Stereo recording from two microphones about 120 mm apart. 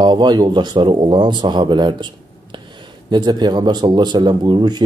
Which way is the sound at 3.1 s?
40° right (ahead or behind).